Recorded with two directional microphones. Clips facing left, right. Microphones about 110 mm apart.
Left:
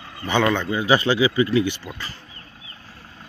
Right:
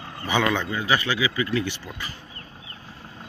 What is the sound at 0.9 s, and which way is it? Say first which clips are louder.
Speech: left 6 dB; 30° left (ahead or behind).